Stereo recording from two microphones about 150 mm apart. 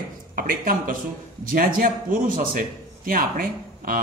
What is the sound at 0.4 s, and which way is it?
A man's voice, 70° right (ahead or behind).